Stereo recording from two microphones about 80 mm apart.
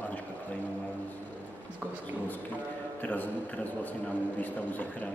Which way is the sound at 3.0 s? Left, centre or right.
Centre.